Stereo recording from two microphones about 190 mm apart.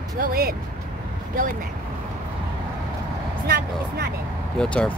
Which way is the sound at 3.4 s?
55° right (ahead or behind).